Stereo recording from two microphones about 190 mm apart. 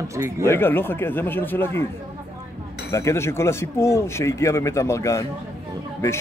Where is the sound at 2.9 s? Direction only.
15° left (ahead or behind).